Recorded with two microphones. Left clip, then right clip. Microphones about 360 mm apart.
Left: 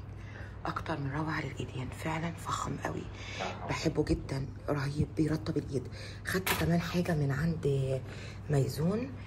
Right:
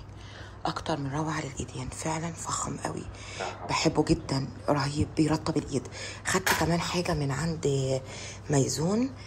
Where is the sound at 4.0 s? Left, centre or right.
Right.